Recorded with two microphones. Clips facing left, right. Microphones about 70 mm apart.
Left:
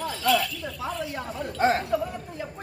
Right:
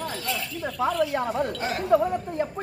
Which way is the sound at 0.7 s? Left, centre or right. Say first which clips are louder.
Right 9 dB; right.